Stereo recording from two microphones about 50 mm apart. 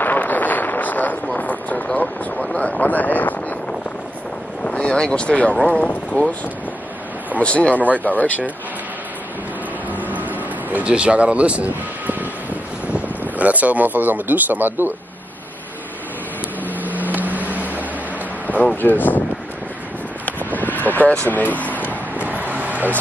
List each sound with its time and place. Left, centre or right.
0.0 s a sound: left
2.8 s speech: left
4.6 s speech: centre
7.3 s speech: left
9.8 s vehicle: right
10.8 s speech: right
16.8 s boat: right
18.5 s speech: left
20.2 s vehicle: left
21.3 s speech: left
22.1 s vehicle: right
22.5 s a sound: right